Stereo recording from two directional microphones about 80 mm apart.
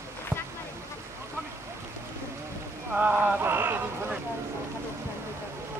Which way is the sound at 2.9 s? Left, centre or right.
Right.